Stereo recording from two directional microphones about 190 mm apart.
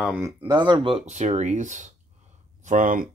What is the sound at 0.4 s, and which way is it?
Speech, 25° right (ahead or behind).